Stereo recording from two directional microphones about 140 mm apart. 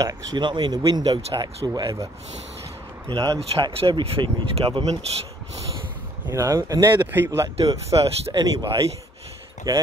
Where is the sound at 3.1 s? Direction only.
25° right (ahead or behind).